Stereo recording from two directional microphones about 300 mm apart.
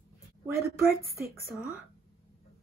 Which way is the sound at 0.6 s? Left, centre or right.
Right.